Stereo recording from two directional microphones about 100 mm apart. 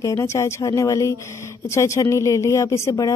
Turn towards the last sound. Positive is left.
turn(degrees=30)  # may be behind; listen again after turning